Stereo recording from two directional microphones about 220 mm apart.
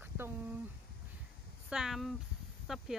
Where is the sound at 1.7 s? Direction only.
Centre (ahead or behind).